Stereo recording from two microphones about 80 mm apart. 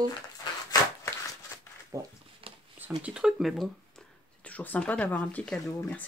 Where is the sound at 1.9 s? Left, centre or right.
Right.